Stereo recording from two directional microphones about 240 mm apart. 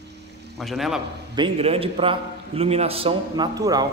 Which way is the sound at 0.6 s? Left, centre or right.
Centre.